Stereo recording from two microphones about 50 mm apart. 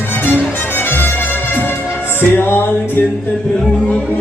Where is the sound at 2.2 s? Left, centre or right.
Left.